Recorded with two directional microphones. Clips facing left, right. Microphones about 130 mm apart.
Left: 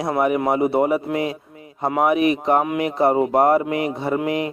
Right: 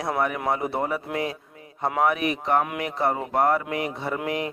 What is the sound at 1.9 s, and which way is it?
Speech, 15° left (ahead or behind).